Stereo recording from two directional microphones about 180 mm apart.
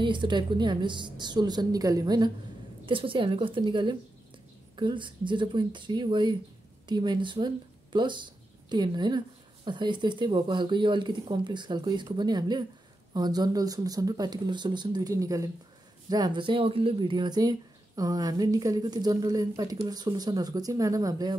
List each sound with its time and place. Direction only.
0.0 s speech: 25° right (ahead or behind)